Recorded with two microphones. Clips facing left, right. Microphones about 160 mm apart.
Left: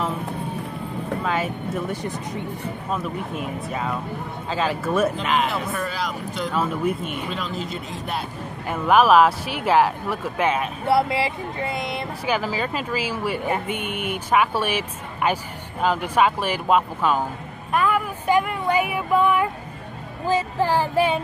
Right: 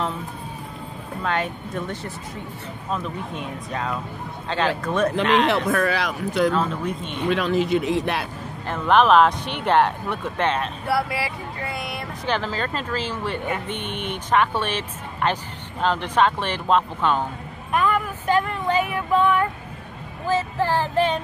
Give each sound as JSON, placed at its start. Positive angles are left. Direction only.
{"t": 1.2, "sound": "speech", "side_deg": 5}
{"t": 5.7, "sound": "speech", "side_deg": -70}
{"t": 6.5, "sound": "speech", "side_deg": 10}
{"t": 7.2, "sound": "speech", "side_deg": -70}
{"t": 8.6, "sound": "speech", "side_deg": 10}
{"t": 10.9, "sound": "speech", "side_deg": 25}
{"t": 12.3, "sound": "speech", "side_deg": 10}